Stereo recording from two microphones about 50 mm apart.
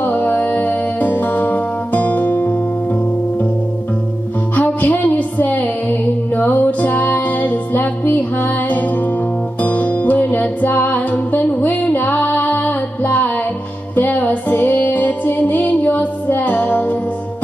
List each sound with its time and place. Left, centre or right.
0.0 s music: left
4.6 s music: left